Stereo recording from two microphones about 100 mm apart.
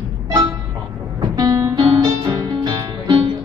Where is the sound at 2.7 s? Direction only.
45° right (ahead or behind).